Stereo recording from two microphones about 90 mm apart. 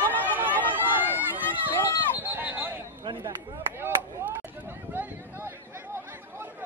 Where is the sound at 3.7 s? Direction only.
25° right (ahead or behind).